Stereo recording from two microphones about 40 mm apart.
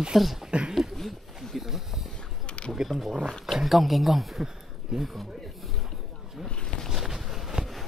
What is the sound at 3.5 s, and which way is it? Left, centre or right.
Speech, centre.